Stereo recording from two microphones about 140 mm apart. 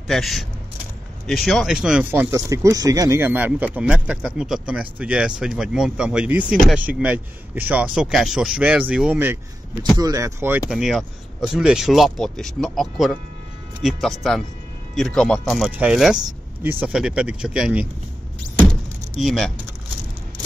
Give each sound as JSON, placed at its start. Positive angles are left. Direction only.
{"t": 0.0, "sound": "speech", "side_deg": 0}
{"t": 2.3, "sound": "speech", "side_deg": -25}
{"t": 9.9, "sound": "speech", "side_deg": -25}
{"t": 10.7, "sound": "speech", "side_deg": 0}
{"t": 18.6, "sound": "keys jangling", "side_deg": 0}